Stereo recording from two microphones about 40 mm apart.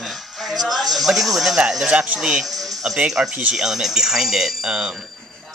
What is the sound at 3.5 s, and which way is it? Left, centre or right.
Speech, centre.